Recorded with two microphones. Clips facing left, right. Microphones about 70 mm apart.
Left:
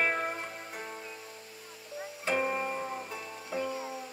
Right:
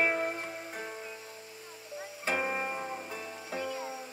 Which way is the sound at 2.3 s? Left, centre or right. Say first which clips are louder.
Left 2 dB; centre.